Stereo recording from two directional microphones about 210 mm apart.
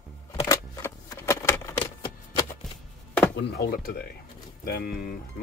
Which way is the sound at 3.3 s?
50° left (ahead or behind).